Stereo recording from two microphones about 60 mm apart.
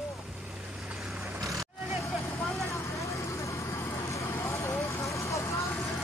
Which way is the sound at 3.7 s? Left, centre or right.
Left.